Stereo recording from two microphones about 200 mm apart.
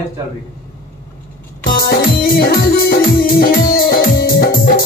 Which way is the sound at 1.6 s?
45° left (ahead or behind).